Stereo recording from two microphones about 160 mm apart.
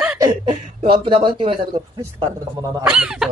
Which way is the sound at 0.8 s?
35° right (ahead or behind).